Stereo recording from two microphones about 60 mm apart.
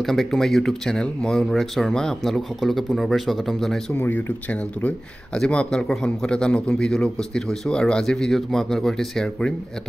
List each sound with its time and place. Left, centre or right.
0.0 s a man's voice: centre
3.9 s speech: left
5.3 s a man's voice: centre